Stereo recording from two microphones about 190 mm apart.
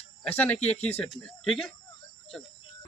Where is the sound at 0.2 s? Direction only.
10° left (ahead or behind).